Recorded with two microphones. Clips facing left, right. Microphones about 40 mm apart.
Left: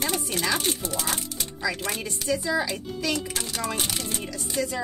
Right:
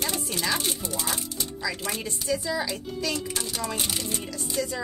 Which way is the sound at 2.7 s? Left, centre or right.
Left.